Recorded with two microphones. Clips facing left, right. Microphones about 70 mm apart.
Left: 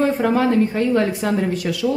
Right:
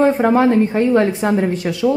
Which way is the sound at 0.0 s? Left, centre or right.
Right.